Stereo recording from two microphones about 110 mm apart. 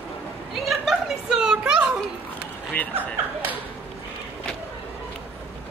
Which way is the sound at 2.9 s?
15° right (ahead or behind).